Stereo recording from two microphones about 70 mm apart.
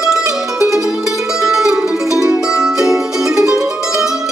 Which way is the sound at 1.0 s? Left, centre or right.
Centre.